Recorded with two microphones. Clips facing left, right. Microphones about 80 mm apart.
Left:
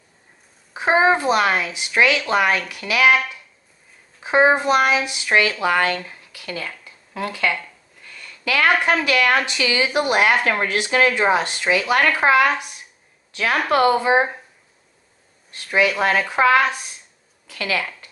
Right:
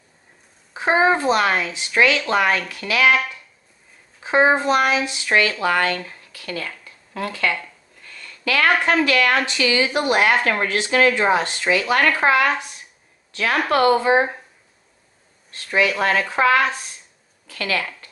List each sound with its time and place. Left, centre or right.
0.7 s speech: centre
4.2 s speech: centre
8.0 s a sound: centre
9.0 s a woman's voice: centre
15.5 s speech: centre